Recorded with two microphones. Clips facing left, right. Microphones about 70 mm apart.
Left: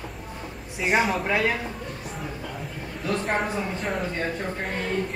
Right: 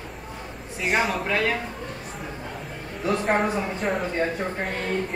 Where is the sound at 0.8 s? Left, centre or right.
Centre.